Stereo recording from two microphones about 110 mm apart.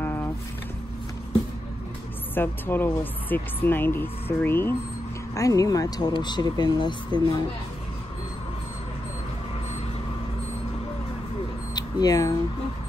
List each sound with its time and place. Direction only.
0.0 s vehicle: 20° left (ahead or behind)
2.3 s speech: 20° left (ahead or behind)
5.3 s speech: 30° left (ahead or behind)
11.7 s a sound: 35° left (ahead or behind)